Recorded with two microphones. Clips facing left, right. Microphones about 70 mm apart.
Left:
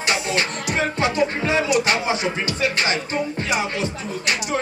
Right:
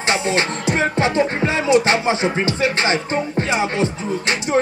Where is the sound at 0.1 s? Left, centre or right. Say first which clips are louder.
Right 4 dB; right.